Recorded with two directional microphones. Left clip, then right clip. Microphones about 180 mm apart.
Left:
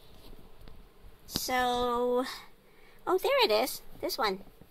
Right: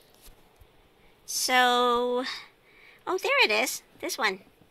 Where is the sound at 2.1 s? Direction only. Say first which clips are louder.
Right 1 dB; 15° left (ahead or behind).